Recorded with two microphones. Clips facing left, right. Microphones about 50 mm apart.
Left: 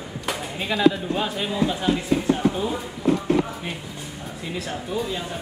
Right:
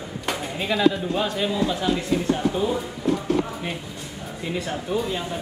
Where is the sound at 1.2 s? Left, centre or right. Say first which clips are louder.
Right 1 dB; centre.